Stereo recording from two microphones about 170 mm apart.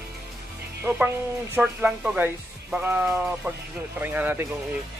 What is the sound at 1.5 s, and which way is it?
Speech, 5° right (ahead or behind).